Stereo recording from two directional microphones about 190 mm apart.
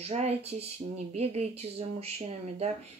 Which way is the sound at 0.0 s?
35° right (ahead or behind).